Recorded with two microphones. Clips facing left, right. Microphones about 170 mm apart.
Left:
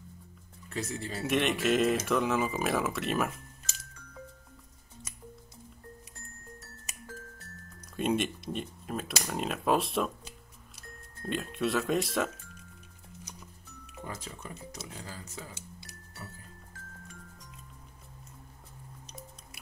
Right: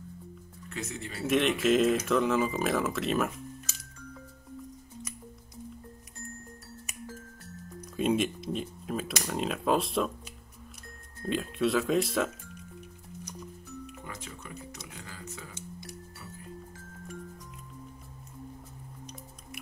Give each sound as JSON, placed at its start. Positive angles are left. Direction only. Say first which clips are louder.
{"t": 0.7, "sound": "speech", "louder": "left 2 dB", "side_deg": 30}
{"t": 1.2, "sound": "speech", "louder": "right 3 dB", "side_deg": 0}
{"t": 7.9, "sound": "speech", "louder": "right 2 dB", "side_deg": 0}
{"t": 14.0, "sound": "speech", "louder": "left 1 dB", "side_deg": 30}